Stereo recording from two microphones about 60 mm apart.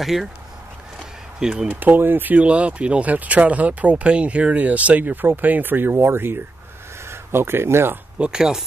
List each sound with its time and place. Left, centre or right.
0.0 s speech: centre
1.4 s speech: centre
1.7 s speech: right
8.2 s speech: centre